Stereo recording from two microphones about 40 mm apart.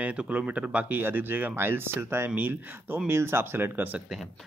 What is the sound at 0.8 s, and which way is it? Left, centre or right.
Speech, right.